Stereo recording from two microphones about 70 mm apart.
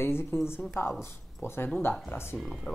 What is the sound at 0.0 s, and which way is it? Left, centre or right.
Speech, left.